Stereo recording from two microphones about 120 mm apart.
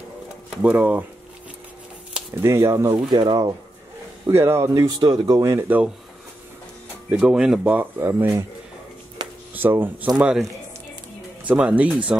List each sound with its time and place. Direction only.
0.6 s speech: 10° right (ahead or behind)
2.4 s speech: 25° right (ahead or behind)
4.3 s speech: 20° right (ahead or behind)
4.8 s speech: 35° right (ahead or behind)
5.6 s speech: 15° right (ahead or behind)
7.1 s speech: 10° right (ahead or behind)
9.5 s speech: 15° right (ahead or behind)
11.4 s speech: 10° right (ahead or behind)